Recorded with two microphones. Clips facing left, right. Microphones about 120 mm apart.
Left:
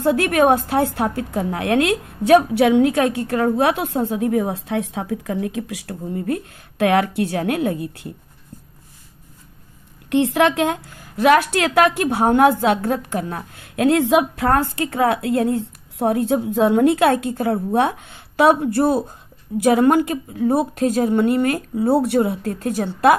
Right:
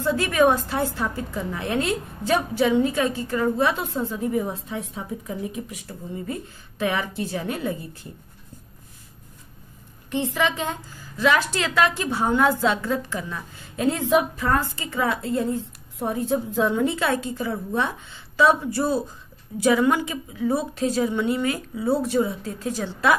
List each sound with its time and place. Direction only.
0.0 s a woman's voice: 60° left (ahead or behind); by 5.9 s 80° left
6.1 s a woman's voice: 60° left (ahead or behind)
10.0 s a woman's voice: 75° left (ahead or behind); by 23.1 s 55° left (ahead or behind)